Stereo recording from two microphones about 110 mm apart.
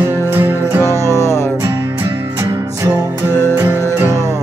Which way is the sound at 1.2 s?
25° left (ahead or behind).